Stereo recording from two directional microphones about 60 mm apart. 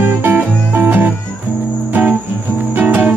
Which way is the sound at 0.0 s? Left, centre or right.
Right.